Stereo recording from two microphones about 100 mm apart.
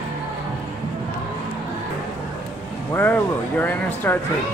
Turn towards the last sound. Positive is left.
turn(degrees=20)  # may be behind; listen again after turning